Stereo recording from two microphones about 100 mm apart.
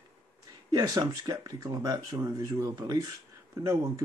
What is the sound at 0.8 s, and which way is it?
Speech, 45° right (ahead or behind).